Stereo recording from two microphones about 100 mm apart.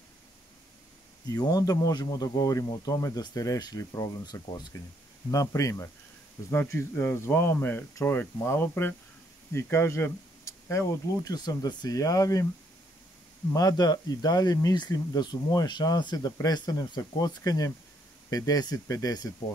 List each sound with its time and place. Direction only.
1.3 s speech: 40° left (ahead or behind)
11.3 s speech: 45° left (ahead or behind)
13.5 s speech: 35° left (ahead or behind)